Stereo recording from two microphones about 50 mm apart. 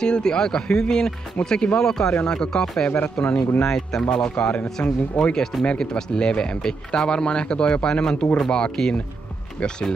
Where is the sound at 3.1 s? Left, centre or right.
Left.